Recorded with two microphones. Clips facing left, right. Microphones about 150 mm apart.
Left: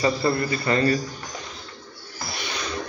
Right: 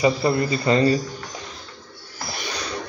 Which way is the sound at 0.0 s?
20° right (ahead or behind).